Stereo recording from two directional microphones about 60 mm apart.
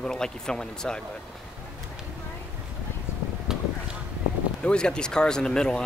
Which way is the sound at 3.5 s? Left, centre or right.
Centre.